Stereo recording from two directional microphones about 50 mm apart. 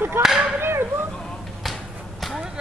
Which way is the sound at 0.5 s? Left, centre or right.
Right.